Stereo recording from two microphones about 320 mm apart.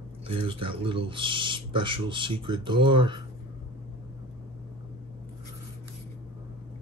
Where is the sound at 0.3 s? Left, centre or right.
Centre.